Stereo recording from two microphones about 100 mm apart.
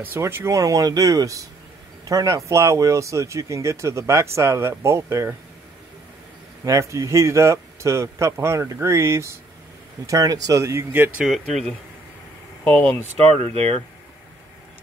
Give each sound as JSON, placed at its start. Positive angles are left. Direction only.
{"t": 0.0, "sound": "a man's voice", "side_deg": -20}
{"t": 6.6, "sound": "a man's voice", "side_deg": -30}
{"t": 11.1, "sound": "speech", "side_deg": 0}
{"t": 12.6, "sound": "speech", "side_deg": 10}
{"t": 13.3, "sound": "speech", "side_deg": -75}